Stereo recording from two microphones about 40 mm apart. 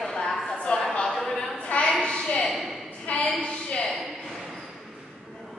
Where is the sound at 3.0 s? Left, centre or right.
Left.